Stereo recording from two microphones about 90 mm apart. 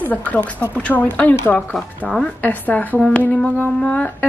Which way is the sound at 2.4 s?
20° left (ahead or behind).